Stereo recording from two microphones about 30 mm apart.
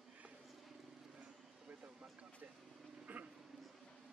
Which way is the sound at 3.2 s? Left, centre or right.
Right.